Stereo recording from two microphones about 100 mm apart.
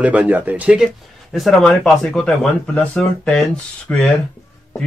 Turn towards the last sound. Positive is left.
turn(degrees=10)  # may be behind; listen again after turning